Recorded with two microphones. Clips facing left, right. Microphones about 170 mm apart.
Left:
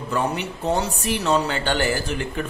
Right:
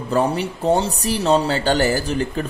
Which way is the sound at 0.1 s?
35° right (ahead or behind).